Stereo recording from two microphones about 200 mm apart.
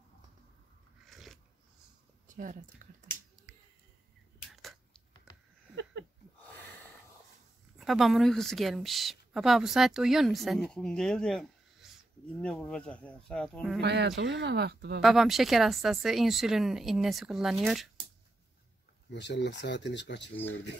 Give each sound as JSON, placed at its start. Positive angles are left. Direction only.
{"t": 1.0, "sound": "biting", "side_deg": 0}
{"t": 2.2, "sound": "speech", "side_deg": -40}
{"t": 4.5, "sound": "a sound", "side_deg": 0}
{"t": 7.7, "sound": "speech", "side_deg": 0}
{"t": 13.7, "sound": "speech", "side_deg": -60}
{"t": 15.0, "sound": "speech", "side_deg": 0}
{"t": 19.1, "sound": "speech", "side_deg": 60}